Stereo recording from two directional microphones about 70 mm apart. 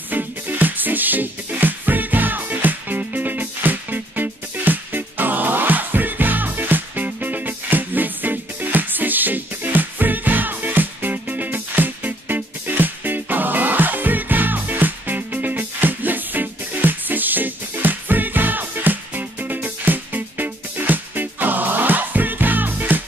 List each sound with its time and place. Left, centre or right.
0.1 s music: right